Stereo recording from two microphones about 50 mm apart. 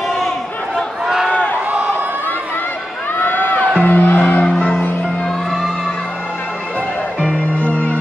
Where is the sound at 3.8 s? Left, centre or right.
Left.